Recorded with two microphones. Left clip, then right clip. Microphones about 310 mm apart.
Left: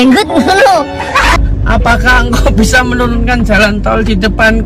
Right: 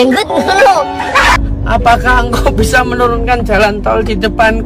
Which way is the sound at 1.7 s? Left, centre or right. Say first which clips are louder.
Even; centre.